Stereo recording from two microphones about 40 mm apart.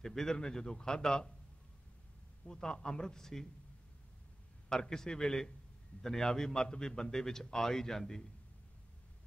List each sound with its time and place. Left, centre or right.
0.0 s a man's voice: centre
2.4 s a man's voice: centre
4.6 s a man's voice: centre